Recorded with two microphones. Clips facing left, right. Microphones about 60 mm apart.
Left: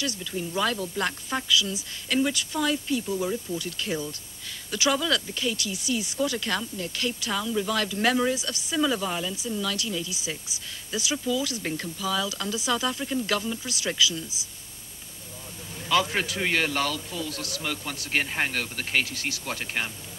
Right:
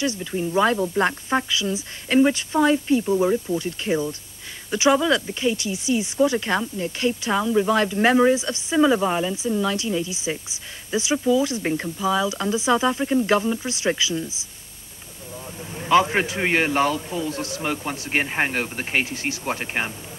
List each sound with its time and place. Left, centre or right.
0.0 s speech: right
15.7 s speech: right